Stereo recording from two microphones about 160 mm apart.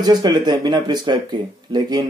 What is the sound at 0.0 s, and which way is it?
Speech, 25° right (ahead or behind).